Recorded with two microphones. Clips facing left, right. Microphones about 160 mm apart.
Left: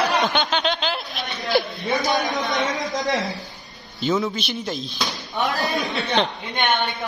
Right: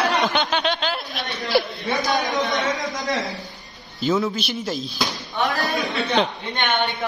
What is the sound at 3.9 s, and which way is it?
A man's voice, centre (ahead or behind).